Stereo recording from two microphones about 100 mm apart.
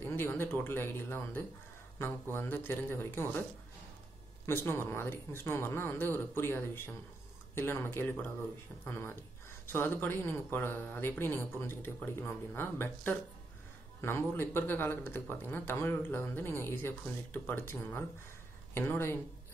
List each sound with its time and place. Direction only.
0.0 s speech: 20° left (ahead or behind)
4.5 s speech: 25° left (ahead or behind)